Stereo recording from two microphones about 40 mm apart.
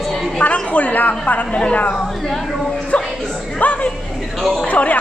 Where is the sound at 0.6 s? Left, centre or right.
Left.